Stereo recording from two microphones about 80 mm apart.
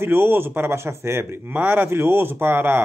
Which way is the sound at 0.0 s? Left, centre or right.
Right.